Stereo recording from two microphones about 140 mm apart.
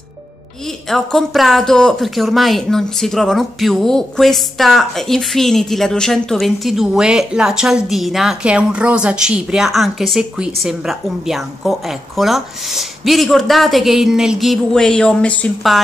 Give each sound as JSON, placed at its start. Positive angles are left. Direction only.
{"t": 0.8, "sound": "speech", "side_deg": 0}